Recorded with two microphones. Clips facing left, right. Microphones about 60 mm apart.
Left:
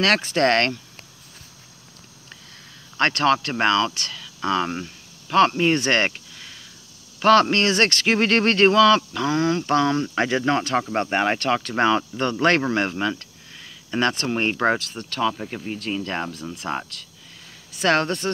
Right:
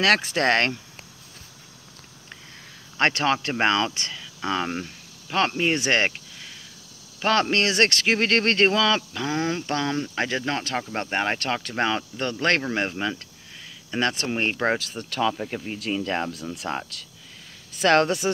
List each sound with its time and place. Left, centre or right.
0.0 s speech: centre
3.0 s speech: centre
4.4 s speech: centre
9.3 s speech: centre
9.6 s speech: centre
12.7 s speech: centre